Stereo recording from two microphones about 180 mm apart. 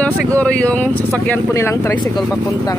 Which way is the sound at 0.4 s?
5° left (ahead or behind).